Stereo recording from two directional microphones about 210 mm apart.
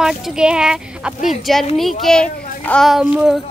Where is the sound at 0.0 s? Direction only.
Centre (ahead or behind).